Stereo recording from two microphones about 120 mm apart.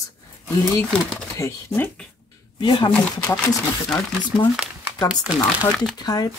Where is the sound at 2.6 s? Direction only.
40° left (ahead or behind).